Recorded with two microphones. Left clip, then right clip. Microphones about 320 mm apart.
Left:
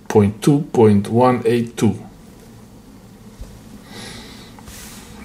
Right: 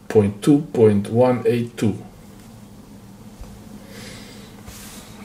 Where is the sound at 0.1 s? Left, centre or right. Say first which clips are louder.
Left 1 dB; left.